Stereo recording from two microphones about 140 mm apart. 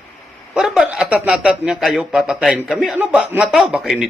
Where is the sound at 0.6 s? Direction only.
5° right (ahead or behind).